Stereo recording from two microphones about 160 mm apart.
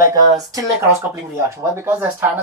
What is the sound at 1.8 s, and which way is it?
Speech, 15° right (ahead or behind).